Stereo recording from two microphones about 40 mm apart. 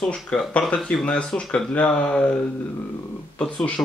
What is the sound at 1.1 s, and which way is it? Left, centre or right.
Speech, left.